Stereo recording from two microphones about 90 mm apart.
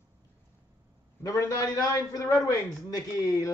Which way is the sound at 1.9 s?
40° left (ahead or behind).